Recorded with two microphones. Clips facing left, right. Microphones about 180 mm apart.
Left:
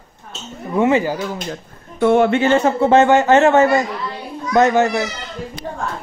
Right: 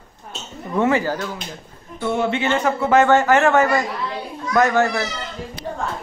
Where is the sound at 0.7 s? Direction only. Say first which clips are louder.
Left 3 dB; 15° left (ahead or behind).